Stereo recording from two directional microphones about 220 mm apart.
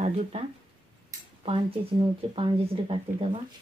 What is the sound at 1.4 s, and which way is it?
Speech, 25° right (ahead or behind).